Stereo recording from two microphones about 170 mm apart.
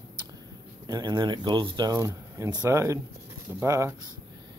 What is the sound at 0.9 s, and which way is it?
Speech, 25° right (ahead or behind).